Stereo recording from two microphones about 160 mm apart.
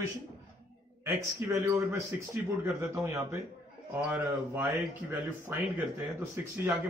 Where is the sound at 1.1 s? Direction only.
15° right (ahead or behind).